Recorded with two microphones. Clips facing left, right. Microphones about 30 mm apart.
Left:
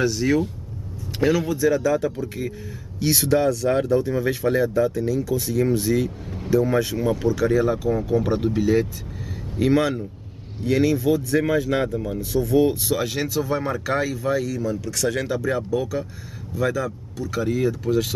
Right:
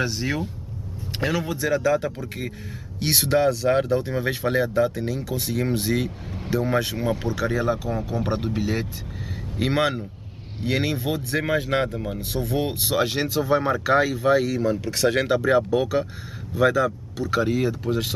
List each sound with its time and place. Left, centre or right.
0.0 s speech: centre
1.5 s speech: centre; by 18.1 s right